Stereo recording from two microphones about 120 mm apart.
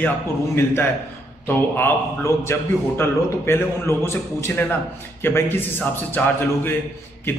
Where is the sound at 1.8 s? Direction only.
20° left (ahead or behind).